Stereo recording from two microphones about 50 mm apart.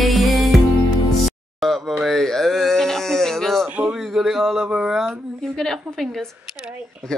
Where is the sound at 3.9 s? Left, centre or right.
Centre.